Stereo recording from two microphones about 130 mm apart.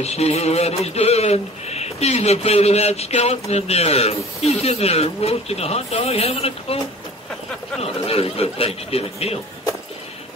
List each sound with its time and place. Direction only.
0.0 s speech: 55° left (ahead or behind)
7.8 s speech: 50° left (ahead or behind)